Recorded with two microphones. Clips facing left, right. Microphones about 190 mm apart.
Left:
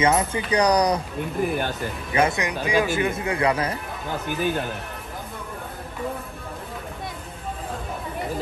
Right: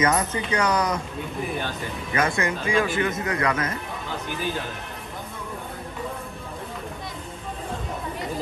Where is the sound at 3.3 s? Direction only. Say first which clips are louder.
Left 5 dB; 30° left (ahead or behind).